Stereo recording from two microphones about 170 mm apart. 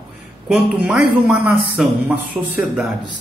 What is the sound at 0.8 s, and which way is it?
Speech, 5° right (ahead or behind).